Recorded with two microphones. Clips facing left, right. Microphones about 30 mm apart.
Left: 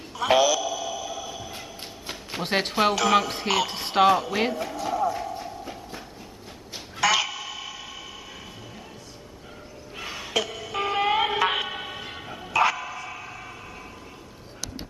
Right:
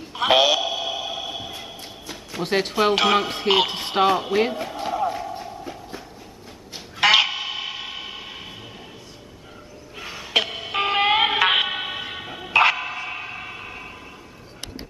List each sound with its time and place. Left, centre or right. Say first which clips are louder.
0.1 s a sound: right 3 dB; right
2.4 s speech: right 2 dB; centre
2.9 s speech: right 4 dB; right
3.2 s speech: even; right
3.4 s speech: right 5 dB; right
3.8 s speech: even; centre
4.8 s a sound: right 1 dB; right
7.0 s honk: right 6 dB; right
9.9 s music: even; centre
10.3 s music: right 6 dB; right